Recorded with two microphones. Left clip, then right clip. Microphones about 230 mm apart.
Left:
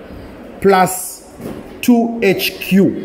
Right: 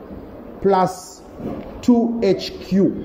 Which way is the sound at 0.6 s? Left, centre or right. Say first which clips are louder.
Left 5 dB; left.